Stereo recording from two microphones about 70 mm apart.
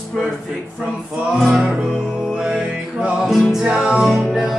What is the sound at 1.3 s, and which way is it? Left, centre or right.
Music, centre.